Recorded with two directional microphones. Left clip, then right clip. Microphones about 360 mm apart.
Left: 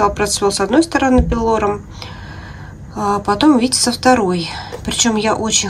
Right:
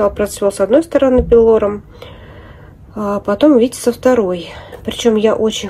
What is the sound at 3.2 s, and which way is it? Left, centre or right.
Speech, centre.